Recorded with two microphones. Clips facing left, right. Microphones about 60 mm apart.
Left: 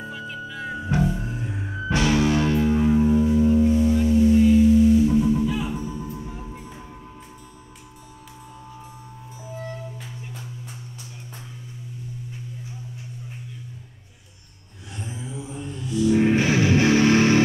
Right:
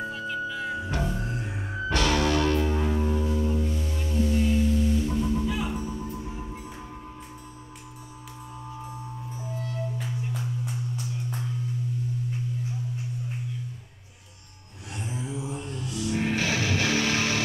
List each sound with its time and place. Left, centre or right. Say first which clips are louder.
0.0 s music: right 3 dB; centre
9.4 s music: left 2 dB; centre
15.0 s a sound: right 1 dB; centre
16.1 s music: left 9 dB; centre
16.3 s music: left 7 dB; left